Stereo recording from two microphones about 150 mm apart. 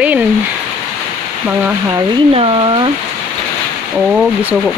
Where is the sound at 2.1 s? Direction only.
40° right (ahead or behind).